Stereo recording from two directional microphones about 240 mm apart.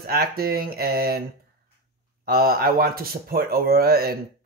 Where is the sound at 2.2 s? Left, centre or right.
Right.